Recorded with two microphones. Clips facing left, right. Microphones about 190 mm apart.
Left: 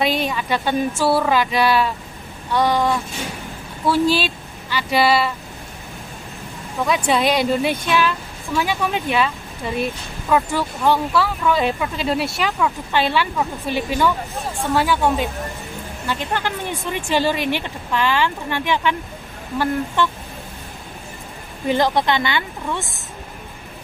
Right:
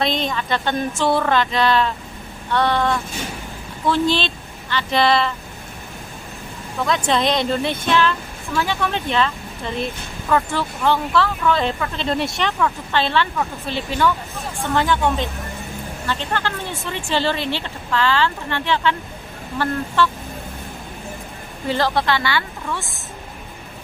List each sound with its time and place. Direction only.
0.0 s speech: 10° left (ahead or behind)
6.8 s speech: 10° left (ahead or behind)
20.0 s speech: 15° left (ahead or behind)
21.6 s a woman's voice: 15° left (ahead or behind)